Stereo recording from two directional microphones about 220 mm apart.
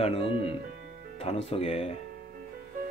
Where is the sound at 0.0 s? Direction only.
25° left (ahead or behind).